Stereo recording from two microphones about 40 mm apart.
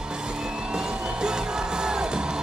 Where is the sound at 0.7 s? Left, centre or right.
Centre.